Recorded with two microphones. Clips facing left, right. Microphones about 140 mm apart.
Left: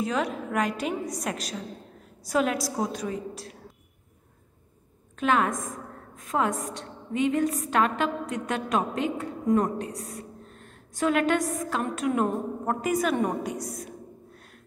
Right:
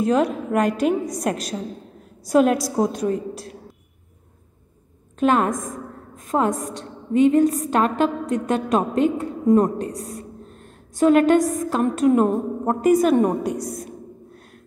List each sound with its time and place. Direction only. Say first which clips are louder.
0.0 s a woman's voice: right 8 dB; 45° right (ahead or behind)
5.2 s a woman's voice: right 5 dB; 40° right (ahead or behind)